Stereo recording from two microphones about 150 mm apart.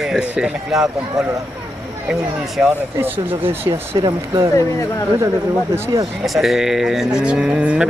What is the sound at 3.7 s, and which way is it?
Speech, 35° right (ahead or behind).